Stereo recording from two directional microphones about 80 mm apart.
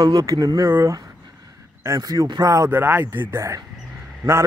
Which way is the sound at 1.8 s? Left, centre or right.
Right.